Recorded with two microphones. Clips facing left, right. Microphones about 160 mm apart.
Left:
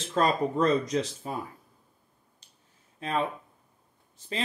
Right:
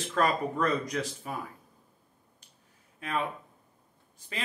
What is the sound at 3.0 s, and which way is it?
Speech, 30° left (ahead or behind).